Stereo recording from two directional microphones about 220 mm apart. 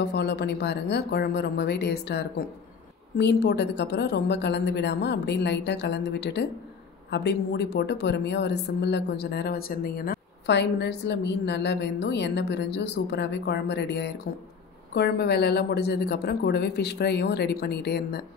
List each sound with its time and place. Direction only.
0.0 s a woman's voice: 50° left (ahead or behind)